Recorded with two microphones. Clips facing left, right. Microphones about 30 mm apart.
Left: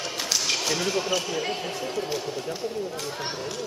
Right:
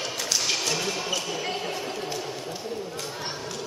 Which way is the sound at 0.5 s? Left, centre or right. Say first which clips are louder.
Left 1 dB; centre.